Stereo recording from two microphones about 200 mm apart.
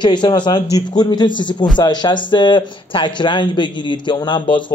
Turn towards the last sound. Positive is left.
turn(degrees=25)  # may be behind; listen again after turning